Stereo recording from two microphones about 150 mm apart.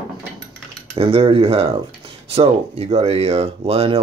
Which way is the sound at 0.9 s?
40° right (ahead or behind).